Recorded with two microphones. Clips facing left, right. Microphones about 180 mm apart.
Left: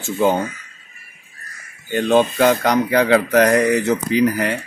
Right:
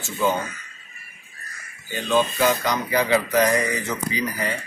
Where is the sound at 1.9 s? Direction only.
60° left (ahead or behind).